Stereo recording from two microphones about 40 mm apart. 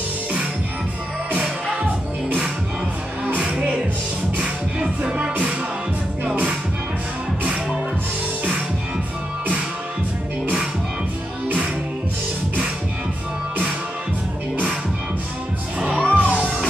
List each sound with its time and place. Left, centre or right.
3.3 s music: right
11.4 s music: right
16.1 s music: right